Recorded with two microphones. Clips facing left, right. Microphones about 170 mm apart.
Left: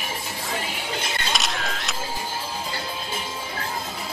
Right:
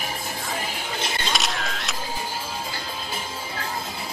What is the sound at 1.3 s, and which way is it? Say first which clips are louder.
Single-lens reflex camera: even; centre (ahead or behind).